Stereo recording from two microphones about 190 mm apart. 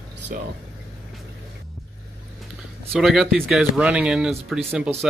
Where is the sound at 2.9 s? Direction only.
Centre (ahead or behind).